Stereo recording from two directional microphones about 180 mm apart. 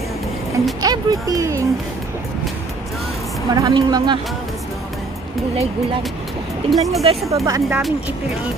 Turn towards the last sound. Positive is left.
turn(degrees=-20)  # may be behind; listen again after turning